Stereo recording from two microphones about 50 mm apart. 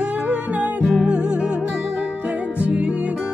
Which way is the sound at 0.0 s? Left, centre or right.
Right.